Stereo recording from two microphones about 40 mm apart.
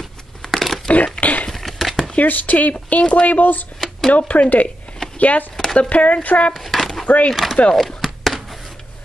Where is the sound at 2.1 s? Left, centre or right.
Left.